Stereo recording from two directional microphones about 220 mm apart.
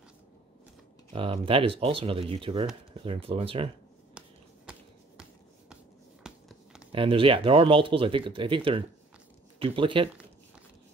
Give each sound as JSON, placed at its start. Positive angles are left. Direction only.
{"t": 1.1, "sound": "speech", "side_deg": -25}
{"t": 6.2, "sound": "a sound", "side_deg": -5}
{"t": 6.9, "sound": "speech", "side_deg": -25}